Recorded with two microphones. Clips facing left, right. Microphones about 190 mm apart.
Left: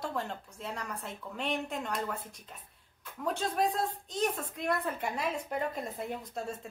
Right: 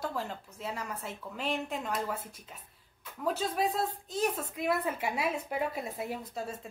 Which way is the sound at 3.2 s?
5° right (ahead or behind).